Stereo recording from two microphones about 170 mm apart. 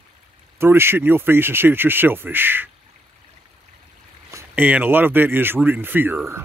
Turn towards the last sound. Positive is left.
turn(degrees=-10)  # may be behind; listen again after turning